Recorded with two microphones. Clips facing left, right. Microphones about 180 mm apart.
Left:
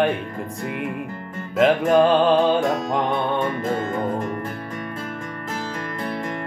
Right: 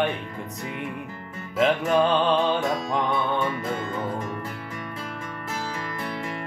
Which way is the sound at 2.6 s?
50° left (ahead or behind).